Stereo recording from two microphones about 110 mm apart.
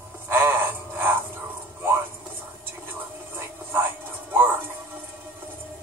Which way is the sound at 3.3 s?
20° right (ahead or behind).